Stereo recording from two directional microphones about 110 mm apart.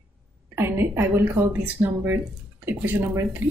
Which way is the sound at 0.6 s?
20° right (ahead or behind).